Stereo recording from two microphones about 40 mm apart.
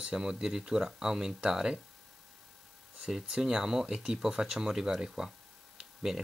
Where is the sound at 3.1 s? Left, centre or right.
Centre.